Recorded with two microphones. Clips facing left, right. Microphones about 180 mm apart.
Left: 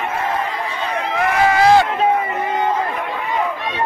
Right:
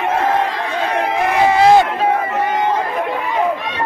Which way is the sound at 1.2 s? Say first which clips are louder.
Right 2 dB; 20° right (ahead or behind).